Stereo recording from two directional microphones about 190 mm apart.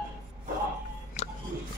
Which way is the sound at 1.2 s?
35° left (ahead or behind).